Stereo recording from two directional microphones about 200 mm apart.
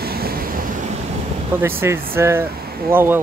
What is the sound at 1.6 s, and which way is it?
Speech, 10° right (ahead or behind).